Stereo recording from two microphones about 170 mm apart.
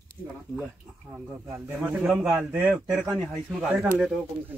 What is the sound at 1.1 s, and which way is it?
A man's voice, 15° right (ahead or behind).